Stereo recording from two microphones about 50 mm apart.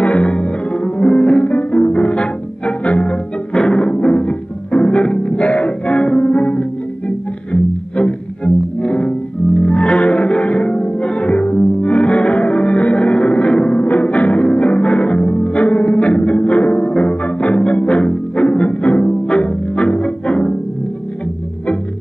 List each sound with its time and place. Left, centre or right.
0.0 s music: left
13.7 s music: left